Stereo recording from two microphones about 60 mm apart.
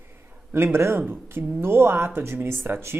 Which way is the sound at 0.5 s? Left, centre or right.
Right.